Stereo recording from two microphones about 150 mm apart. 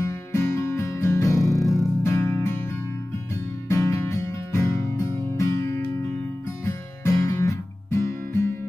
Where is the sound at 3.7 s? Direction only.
20° left (ahead or behind).